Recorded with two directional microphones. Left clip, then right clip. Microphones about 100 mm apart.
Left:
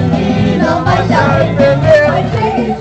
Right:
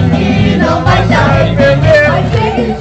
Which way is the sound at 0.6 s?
Centre (ahead or behind).